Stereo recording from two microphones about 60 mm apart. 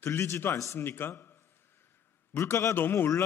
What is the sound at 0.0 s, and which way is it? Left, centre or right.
A man's voice, left.